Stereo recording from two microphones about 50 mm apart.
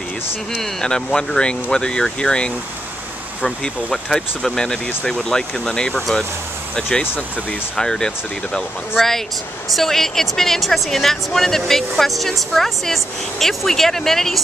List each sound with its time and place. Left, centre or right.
0.6 s speech: centre
9.8 s a woman's voice: centre